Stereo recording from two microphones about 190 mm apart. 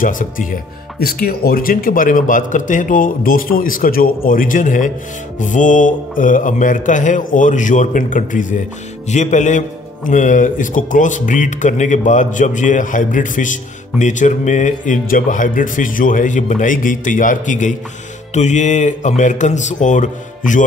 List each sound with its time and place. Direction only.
0.0 s speech: 45° left (ahead or behind)